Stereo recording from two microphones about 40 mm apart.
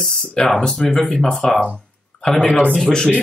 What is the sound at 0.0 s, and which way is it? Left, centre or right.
Speech, centre.